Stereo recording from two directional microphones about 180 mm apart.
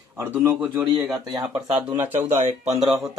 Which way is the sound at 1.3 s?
25° right (ahead or behind).